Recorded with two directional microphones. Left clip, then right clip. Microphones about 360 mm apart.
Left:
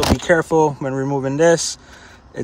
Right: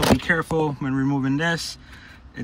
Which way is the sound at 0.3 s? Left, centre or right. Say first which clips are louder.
Left 7 dB; centre.